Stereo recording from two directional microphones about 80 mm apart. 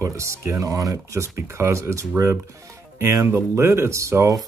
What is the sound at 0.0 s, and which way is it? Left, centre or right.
Speech, right.